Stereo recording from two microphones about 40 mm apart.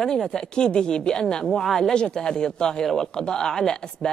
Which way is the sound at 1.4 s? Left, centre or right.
Centre.